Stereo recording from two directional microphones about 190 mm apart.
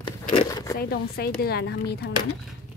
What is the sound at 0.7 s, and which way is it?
Speech, 55° left (ahead or behind).